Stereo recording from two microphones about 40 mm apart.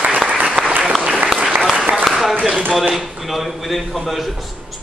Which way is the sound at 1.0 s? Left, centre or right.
Right.